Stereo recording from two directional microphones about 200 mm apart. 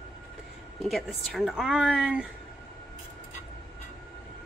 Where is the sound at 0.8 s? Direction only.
Centre (ahead or behind).